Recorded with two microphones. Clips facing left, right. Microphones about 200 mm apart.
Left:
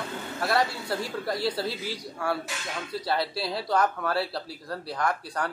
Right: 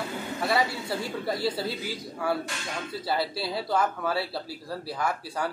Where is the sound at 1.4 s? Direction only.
25° right (ahead or behind).